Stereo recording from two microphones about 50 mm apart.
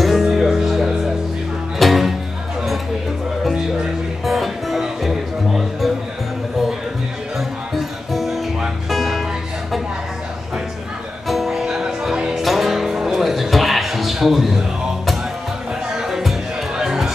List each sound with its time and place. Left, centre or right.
0.0 s music: centre
4.2 s music: centre
8.1 s music: centre
11.2 s music: centre
15.9 s music: centre